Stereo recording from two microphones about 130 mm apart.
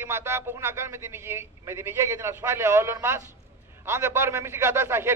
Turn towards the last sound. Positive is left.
turn(degrees=-20)  # may be behind; listen again after turning